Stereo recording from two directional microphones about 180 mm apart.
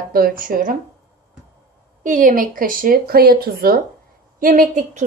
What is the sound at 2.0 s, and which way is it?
A woman's voice, 45° right (ahead or behind).